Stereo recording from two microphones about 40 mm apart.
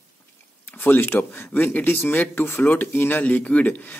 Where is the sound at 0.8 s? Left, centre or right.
Left.